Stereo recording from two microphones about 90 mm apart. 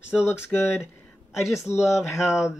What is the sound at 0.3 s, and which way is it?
Speech, 25° left (ahead or behind).